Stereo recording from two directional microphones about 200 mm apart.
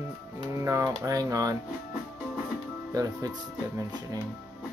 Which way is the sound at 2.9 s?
15° right (ahead or behind).